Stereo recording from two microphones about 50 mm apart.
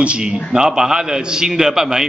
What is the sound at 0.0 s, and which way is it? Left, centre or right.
A man's voice, centre.